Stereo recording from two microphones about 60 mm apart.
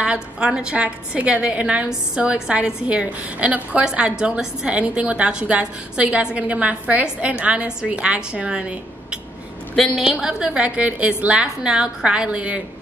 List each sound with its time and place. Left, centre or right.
0.0 s a woman's voice: centre